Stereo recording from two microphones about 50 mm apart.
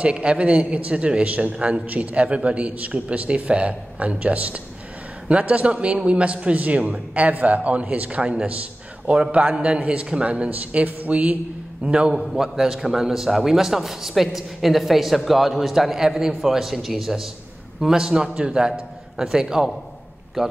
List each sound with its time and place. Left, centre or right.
0.0 s a man's voice: right
11.8 s a man's voice: centre
12.1 s a man's voice: centre